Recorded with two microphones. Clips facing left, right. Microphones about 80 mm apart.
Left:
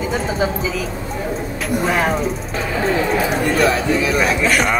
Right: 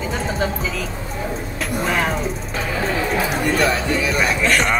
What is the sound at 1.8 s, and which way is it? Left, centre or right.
Speech, centre.